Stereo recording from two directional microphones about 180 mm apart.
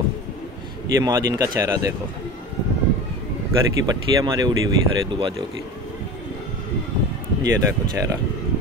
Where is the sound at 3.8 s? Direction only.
20° right (ahead or behind).